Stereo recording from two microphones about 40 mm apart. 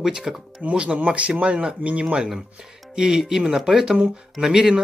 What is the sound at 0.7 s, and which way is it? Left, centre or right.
Speech, right.